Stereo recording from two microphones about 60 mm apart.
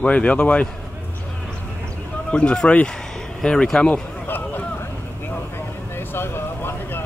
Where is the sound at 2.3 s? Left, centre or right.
Centre.